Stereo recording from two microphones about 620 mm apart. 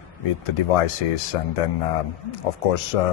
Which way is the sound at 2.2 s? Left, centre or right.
Left.